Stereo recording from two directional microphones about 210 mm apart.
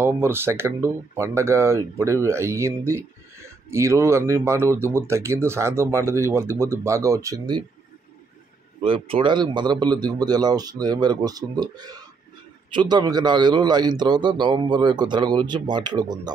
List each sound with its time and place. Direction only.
0.0 s speech: 10° right (ahead or behind)
8.8 s a man's voice: 25° right (ahead or behind)